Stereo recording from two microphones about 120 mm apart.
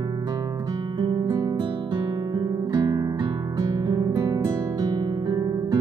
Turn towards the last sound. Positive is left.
turn(degrees=-35)  # may be behind; listen again after turning